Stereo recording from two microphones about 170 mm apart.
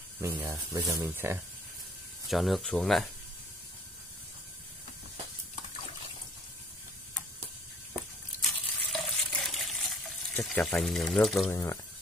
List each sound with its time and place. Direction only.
0.2 s speech: 15° right (ahead or behind)
2.2 s speech: centre (ahead or behind)
8.4 s water: centre (ahead or behind)
11.5 s speech: 15° left (ahead or behind)